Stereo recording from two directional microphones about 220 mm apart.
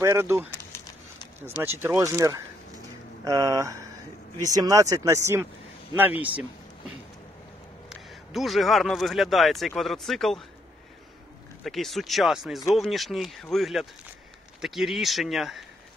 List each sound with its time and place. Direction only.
0.0 s speech: 10° right (ahead or behind)
0.6 s a sound: 15° left (ahead or behind)
1.8 s speech: 10° right (ahead or behind)
7.9 s speech: centre (ahead or behind)
11.6 s speech: centre (ahead or behind)